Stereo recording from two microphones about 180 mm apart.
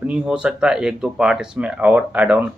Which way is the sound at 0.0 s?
5° right (ahead or behind).